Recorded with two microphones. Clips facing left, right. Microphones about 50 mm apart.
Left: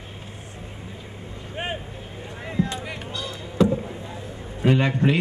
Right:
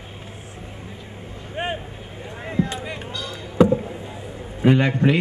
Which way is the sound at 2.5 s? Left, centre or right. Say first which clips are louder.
Right 2 dB; centre.